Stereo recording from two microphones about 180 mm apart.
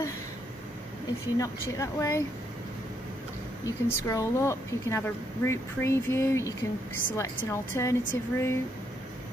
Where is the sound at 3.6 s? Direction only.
15° left (ahead or behind).